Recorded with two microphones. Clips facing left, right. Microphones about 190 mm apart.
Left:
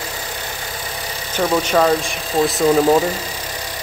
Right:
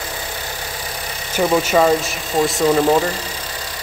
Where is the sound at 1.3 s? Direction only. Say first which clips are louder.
Right 1 dB; 10° right (ahead or behind).